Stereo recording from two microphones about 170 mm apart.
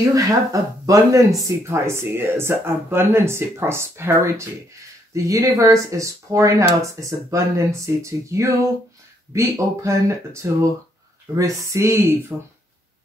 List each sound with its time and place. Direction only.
0.1 s speech: 20° right (ahead or behind)